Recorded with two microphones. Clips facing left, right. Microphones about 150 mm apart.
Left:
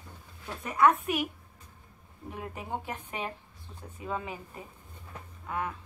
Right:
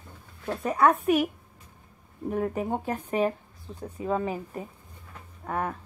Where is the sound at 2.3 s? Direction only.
45° right (ahead or behind).